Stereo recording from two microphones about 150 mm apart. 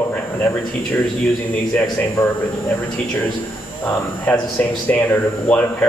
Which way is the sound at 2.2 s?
20° left (ahead or behind).